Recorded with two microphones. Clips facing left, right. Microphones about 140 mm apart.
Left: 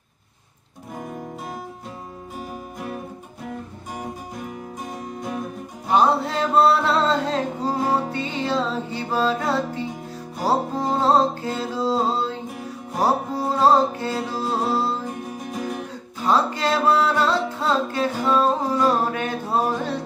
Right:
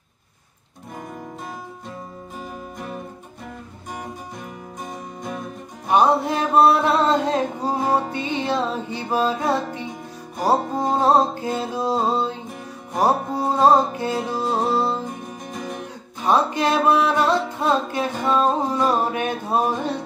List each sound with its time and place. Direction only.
5.9 s music: 15° right (ahead or behind)
15.5 s music: 5° left (ahead or behind)
16.3 s music: 20° right (ahead or behind)